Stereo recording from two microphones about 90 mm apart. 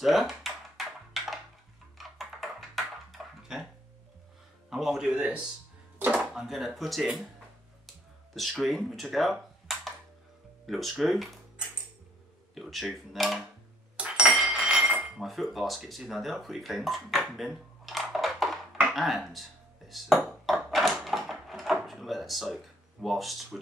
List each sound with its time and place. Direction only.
0.0 s dishes: centre (ahead or behind)
2.0 s a sound: centre (ahead or behind)
4.6 s speech: 5° right (ahead or behind)
8.4 s speech: centre (ahead or behind)
12.5 s speech: centre (ahead or behind)
13.9 s dishes: 10° right (ahead or behind)
14.4 s chink: 10° right (ahead or behind)
15.1 s cutlery: centre (ahead or behind)
15.5 s speech: centre (ahead or behind)
19.9 s ping: centre (ahead or behind)
23.0 s speech: centre (ahead or behind)